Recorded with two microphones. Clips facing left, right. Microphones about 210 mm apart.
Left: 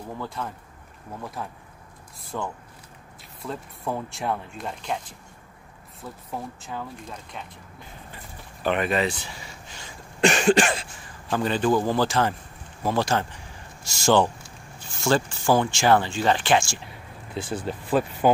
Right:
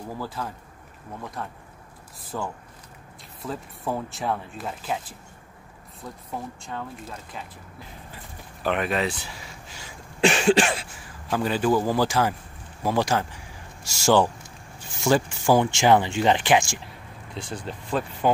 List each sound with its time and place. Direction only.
0.2 s speech: 5° right (ahead or behind)
8.6 s speech: centre (ahead or behind); by 16.8 s 15° right (ahead or behind)
16.8 s speech: 5° left (ahead or behind)